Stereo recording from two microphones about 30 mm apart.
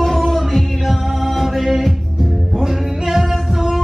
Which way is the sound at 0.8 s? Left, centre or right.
Centre.